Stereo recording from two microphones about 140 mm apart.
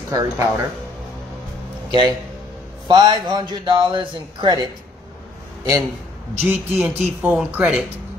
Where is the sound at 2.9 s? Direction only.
30° right (ahead or behind).